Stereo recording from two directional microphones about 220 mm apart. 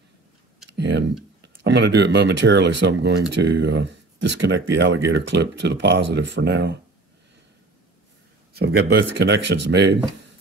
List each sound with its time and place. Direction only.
0.7 s speech: 50° right (ahead or behind)
8.5 s speech: 50° right (ahead or behind)